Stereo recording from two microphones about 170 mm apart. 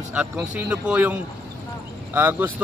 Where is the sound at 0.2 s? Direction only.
10° right (ahead or behind).